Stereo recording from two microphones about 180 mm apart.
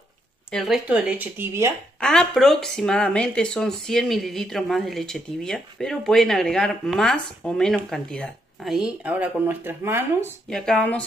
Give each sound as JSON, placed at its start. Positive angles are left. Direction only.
{"t": 0.5, "sound": "speech", "side_deg": 0}
{"t": 2.0, "sound": "speech", "side_deg": 5}
{"t": 10.5, "sound": "speech", "side_deg": 5}